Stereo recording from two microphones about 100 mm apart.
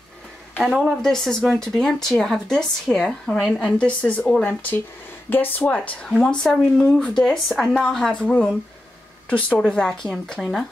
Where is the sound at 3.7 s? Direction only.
10° left (ahead or behind).